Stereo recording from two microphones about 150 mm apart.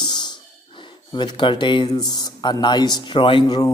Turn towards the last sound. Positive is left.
turn(degrees=25)  # may be behind; listen again after turning